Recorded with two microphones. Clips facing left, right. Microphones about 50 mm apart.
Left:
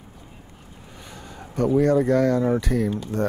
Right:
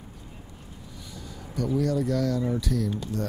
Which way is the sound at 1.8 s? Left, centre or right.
Left.